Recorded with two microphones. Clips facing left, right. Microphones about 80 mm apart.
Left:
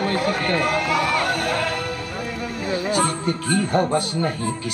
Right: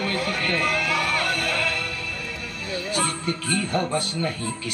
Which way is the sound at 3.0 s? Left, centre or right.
Left.